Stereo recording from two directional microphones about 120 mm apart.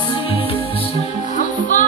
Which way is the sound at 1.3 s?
90° left.